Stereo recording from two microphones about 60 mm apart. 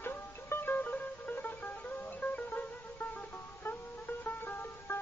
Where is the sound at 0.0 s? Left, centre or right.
Left.